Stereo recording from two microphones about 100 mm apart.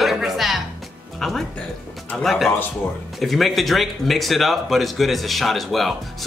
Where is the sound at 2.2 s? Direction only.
Centre (ahead or behind).